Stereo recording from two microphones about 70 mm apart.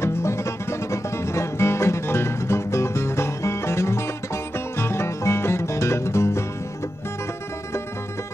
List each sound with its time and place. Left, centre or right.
0.0 s music: left